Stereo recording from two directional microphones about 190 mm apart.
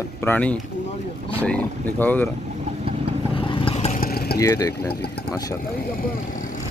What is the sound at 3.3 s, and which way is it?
Vehicle, 25° left (ahead or behind).